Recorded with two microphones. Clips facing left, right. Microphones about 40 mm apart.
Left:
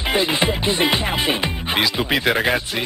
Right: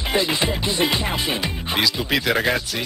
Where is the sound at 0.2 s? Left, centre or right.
Left.